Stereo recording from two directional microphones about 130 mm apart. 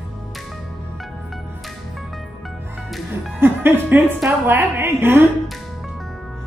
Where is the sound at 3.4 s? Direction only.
15° right (ahead or behind).